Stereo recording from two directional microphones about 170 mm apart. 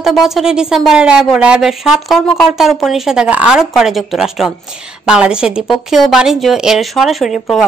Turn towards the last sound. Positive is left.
turn(degrees=0)  # may be behind; listen again after turning